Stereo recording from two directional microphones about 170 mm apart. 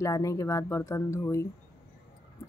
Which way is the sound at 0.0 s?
20° left (ahead or behind).